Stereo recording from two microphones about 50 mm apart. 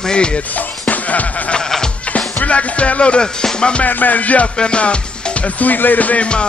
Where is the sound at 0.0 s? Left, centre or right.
Centre.